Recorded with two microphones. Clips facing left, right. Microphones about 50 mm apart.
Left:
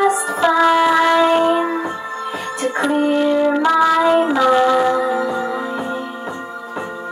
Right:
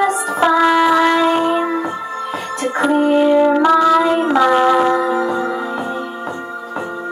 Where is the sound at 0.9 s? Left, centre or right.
Centre.